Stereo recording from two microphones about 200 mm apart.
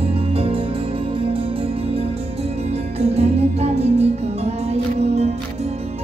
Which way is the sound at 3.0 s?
35° right (ahead or behind).